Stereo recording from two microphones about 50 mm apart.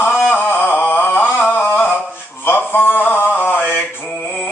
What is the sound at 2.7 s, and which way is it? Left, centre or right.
Mantra, left.